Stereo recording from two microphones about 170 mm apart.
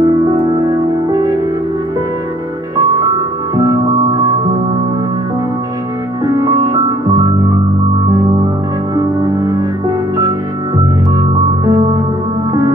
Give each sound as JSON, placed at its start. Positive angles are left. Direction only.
{"t": 0.0, "sound": "music", "side_deg": -25}
{"t": 6.2, "sound": "music", "side_deg": -20}
{"t": 8.9, "sound": "music", "side_deg": -25}
{"t": 11.1, "sound": "music", "side_deg": -25}